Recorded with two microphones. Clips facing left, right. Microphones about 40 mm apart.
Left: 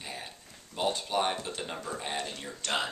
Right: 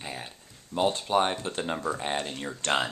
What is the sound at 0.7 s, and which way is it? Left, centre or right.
Speech, centre.